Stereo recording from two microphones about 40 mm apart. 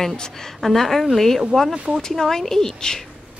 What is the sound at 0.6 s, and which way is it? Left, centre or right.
A woman's voice, centre.